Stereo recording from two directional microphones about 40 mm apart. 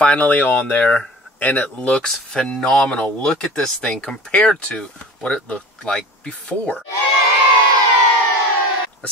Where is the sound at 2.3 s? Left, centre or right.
Left.